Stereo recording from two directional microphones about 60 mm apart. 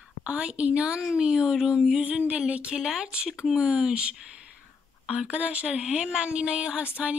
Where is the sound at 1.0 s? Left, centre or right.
Centre.